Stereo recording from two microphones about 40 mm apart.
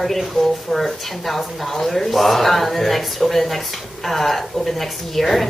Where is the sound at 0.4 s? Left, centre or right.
Centre.